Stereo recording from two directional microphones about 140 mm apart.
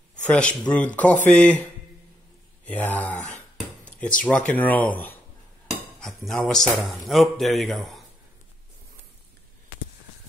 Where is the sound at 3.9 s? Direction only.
10° left (ahead or behind).